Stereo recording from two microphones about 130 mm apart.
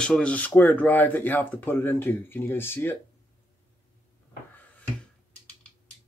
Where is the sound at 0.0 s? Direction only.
10° left (ahead or behind).